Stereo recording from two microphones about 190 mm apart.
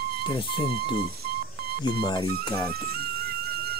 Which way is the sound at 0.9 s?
55° right (ahead or behind).